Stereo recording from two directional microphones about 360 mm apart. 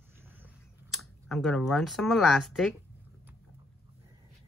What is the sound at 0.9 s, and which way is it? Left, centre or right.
Speech, centre.